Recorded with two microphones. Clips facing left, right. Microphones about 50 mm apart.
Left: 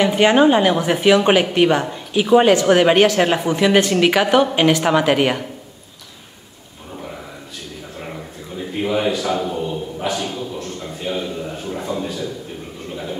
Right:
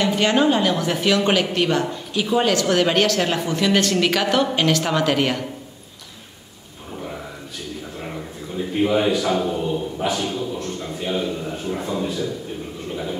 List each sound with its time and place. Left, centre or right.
0.0 s a woman's voice: left
2.3 s a woman's voice: left
8.5 s speech: centre
10.2 s a sound: centre